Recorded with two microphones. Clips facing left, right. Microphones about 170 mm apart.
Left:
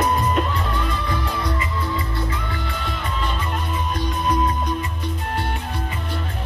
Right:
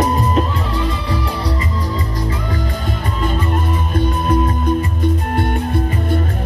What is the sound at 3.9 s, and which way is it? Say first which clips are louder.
Music: right 6 dB; 50° right (ahead or behind).